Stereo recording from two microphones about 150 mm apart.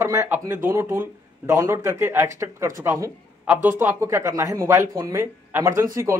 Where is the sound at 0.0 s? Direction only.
20° right (ahead or behind).